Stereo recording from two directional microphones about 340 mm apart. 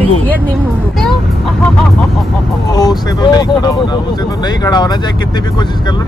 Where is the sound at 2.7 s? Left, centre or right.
Centre.